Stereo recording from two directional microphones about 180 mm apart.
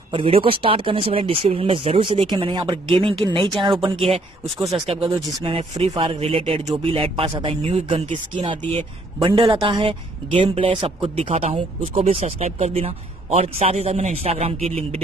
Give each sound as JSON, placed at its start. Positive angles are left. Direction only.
{"t": 0.1, "sound": "speech", "side_deg": -30}